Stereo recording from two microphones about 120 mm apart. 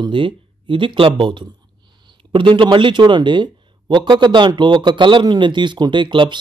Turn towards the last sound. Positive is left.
turn(degrees=-40)  # may be behind; listen again after turning